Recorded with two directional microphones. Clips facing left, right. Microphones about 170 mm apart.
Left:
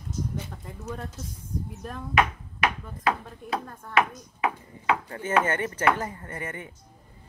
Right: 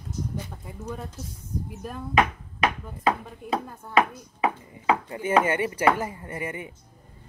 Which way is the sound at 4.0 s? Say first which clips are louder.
Right 2 dB; 30° right (ahead or behind).